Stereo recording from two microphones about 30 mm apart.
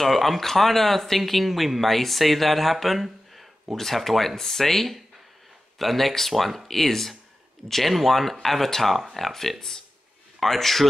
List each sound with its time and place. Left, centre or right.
0.0 s speech: centre
9.6 s speech: centre
10.4 s speech: centre